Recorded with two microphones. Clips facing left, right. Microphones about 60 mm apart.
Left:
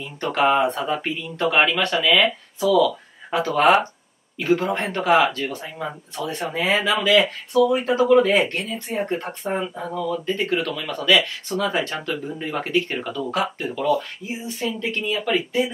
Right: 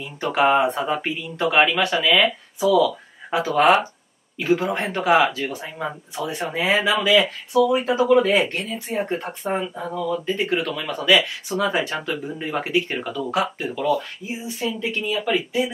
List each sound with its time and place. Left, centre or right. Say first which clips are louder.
0.0 s speech: right 1 dB; centre